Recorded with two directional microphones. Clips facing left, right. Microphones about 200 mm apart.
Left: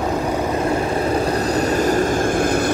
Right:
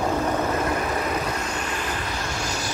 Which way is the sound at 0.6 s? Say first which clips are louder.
Left 5 dB; 30° left (ahead or behind).